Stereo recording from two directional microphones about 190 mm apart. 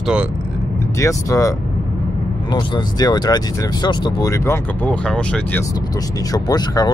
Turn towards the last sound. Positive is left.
turn(degrees=20)  # may be behind; listen again after turning